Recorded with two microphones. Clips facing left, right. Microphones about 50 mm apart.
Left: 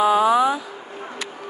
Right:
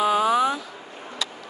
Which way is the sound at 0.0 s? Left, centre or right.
Centre.